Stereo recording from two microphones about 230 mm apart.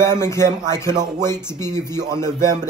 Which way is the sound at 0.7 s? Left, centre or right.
Centre.